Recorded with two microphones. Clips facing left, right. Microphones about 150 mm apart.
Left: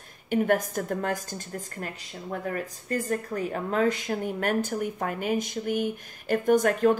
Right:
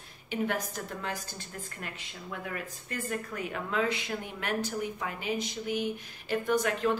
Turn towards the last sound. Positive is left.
turn(degrees=45)  # may be behind; listen again after turning